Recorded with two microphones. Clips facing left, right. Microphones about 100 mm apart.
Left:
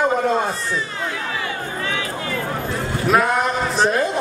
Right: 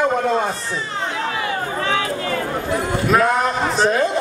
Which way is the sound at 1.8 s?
40° right (ahead or behind).